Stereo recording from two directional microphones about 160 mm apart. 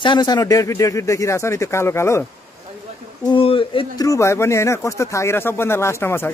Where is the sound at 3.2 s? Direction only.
35° left (ahead or behind).